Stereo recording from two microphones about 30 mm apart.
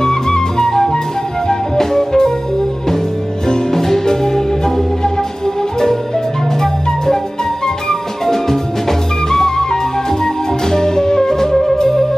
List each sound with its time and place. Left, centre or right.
0.0 s flute: left
1.8 s music: centre
3.4 s music: left
7.6 s music: centre